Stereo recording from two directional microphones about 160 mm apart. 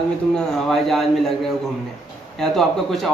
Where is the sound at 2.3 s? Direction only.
Centre (ahead or behind).